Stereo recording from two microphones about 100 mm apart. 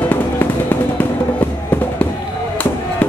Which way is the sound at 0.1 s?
20° left (ahead or behind).